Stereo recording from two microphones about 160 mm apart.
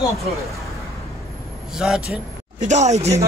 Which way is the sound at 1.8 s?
5° right (ahead or behind).